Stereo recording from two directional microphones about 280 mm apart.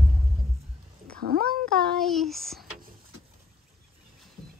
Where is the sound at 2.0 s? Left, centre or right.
Centre.